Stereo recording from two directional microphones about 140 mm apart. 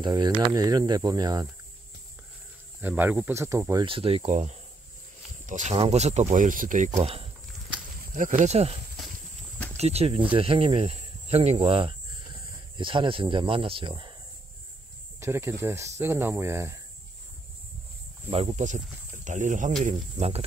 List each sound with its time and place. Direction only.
0.0 s speech: 30° right (ahead or behind)
2.8 s speech: 15° right (ahead or behind)
3.8 s speech: 40° right (ahead or behind)
8.1 s speech: 70° right (ahead or behind); by 8.7 s 50° right (ahead or behind)
9.8 s speech: 50° right (ahead or behind)
15.1 s speech: 20° right (ahead or behind)
18.3 s speech: 45° right (ahead or behind)